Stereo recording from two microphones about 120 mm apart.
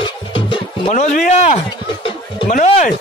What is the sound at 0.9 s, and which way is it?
Speech, 90° left.